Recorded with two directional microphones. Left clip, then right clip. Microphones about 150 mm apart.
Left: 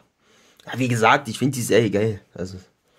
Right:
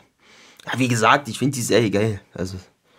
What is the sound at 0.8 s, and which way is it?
Speech, 15° right (ahead or behind).